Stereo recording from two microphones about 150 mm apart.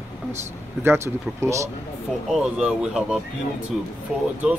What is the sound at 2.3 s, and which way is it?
Speech, 5° right (ahead or behind).